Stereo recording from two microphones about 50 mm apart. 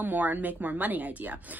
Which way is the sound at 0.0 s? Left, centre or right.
Right.